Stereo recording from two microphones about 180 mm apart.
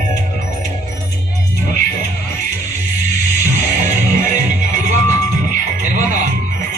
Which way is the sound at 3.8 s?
45° right (ahead or behind).